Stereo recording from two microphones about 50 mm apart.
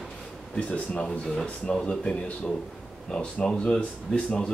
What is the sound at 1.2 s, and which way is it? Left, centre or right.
Speech, centre.